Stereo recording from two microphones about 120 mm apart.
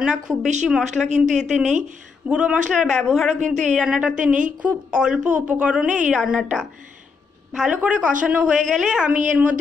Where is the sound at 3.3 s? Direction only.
90° right.